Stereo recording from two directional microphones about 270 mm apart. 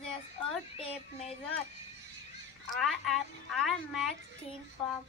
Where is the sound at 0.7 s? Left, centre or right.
Left.